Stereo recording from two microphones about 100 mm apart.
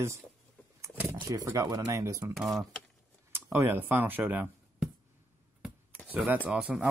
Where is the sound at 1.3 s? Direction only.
35° right (ahead or behind).